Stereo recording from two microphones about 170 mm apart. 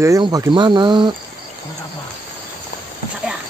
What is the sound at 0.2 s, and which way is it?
Speech, 25° right (ahead or behind).